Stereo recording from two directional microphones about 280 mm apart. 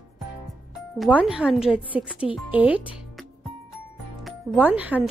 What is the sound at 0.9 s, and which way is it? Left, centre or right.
Speech, centre.